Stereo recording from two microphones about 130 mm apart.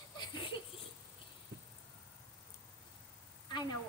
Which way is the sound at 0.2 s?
40° left (ahead or behind).